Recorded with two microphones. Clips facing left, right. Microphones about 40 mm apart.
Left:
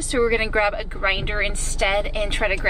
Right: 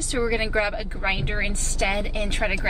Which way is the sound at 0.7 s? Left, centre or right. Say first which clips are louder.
Left 3 dB; left.